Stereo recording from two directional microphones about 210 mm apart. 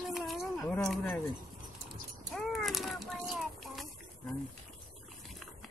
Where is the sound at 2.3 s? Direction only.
Centre (ahead or behind).